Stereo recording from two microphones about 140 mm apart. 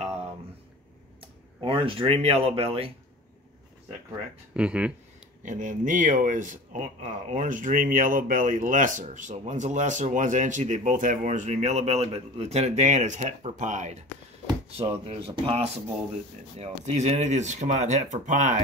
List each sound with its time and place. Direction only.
1.2 s speech: 40° right (ahead or behind)
4.6 s speech: 10° right (ahead or behind)
5.4 s speech: 65° right (ahead or behind)
15.0 s speech: 40° right (ahead or behind); by 18.6 s 60° right (ahead or behind)